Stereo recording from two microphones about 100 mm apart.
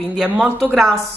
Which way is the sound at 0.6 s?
5° left (ahead or behind).